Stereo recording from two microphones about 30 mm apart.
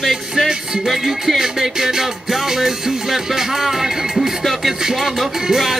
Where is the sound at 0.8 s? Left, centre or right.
Centre.